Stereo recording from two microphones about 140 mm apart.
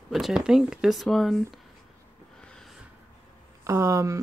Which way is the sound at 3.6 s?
20° right (ahead or behind).